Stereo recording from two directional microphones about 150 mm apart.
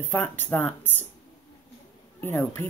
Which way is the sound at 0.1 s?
15° left (ahead or behind).